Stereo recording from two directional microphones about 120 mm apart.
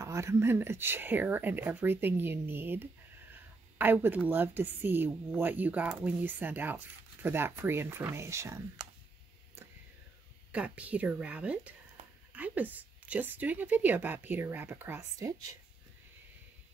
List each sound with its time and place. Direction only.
0.0 s a woman's voice: 25° right (ahead or behind)
10.5 s a woman's voice: 10° right (ahead or behind)
15.1 s speech: 30° right (ahead or behind)